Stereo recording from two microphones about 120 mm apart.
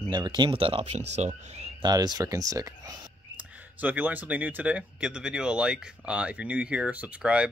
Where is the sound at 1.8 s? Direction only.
35° right (ahead or behind).